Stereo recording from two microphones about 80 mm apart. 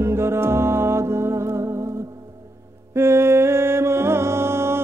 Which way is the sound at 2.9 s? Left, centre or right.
Right.